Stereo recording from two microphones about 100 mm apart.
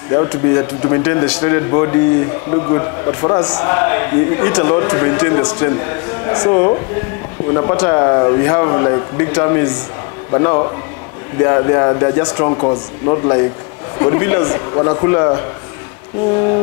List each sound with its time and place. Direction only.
0.1 s a man's voice: 30° left (ahead or behind)